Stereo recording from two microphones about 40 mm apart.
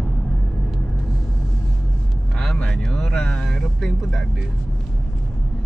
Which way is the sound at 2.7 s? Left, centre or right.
Centre.